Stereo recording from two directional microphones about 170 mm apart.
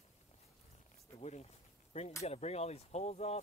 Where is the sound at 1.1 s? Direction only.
40° left (ahead or behind).